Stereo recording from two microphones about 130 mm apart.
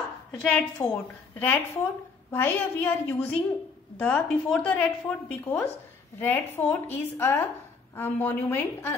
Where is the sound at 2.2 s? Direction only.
15° left (ahead or behind).